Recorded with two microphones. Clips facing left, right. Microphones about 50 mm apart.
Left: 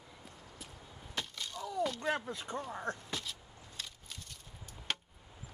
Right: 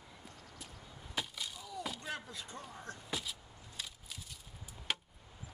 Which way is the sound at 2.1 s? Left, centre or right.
Left.